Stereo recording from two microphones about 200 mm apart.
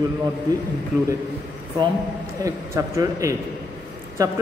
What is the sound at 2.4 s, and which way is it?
Speech, 15° right (ahead or behind).